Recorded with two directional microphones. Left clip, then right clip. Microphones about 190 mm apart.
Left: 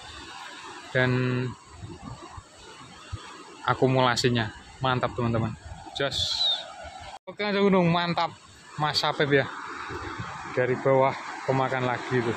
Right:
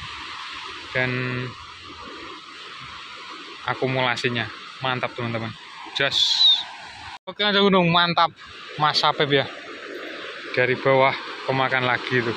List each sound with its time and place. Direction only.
0.9 s speech: 30° left (ahead or behind)
3.6 s speech: 30° left (ahead or behind)
5.9 s a sound: 10° left (ahead or behind)
7.2 s speech: centre (ahead or behind)
10.5 s speech: centre (ahead or behind)